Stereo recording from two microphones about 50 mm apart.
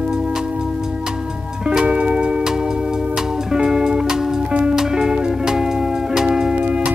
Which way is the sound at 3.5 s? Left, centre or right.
Centre.